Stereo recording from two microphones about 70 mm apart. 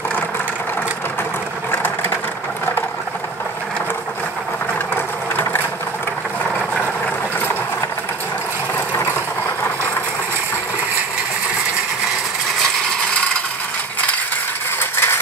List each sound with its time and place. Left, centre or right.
1.7 s sewing machine: left
8.7 s vehicle: left
14.8 s a sound: left